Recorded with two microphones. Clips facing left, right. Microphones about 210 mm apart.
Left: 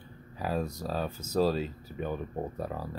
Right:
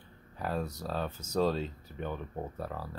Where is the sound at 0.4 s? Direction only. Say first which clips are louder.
Left 3 dB; 10° left (ahead or behind).